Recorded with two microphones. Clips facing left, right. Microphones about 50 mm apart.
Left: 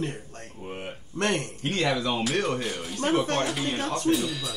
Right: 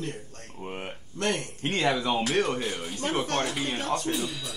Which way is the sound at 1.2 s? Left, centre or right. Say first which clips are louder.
Left 2 dB; left.